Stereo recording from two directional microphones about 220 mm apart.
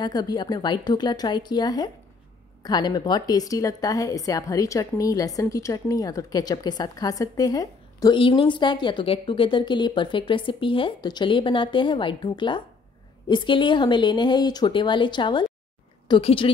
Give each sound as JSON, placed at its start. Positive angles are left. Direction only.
{"t": 0.0, "sound": "a woman's voice", "side_deg": 20}